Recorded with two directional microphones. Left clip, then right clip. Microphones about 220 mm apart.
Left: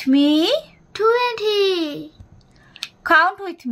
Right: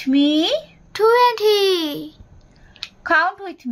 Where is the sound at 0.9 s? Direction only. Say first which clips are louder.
Right 3 dB; 50° right (ahead or behind).